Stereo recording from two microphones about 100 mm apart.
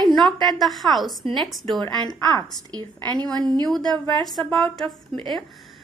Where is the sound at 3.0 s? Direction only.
45° right (ahead or behind).